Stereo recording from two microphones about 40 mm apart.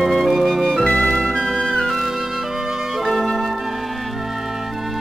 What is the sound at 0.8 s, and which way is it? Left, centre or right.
Music, left.